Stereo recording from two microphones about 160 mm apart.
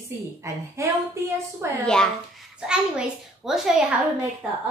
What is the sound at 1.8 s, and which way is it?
A woman's voice, 5° left (ahead or behind).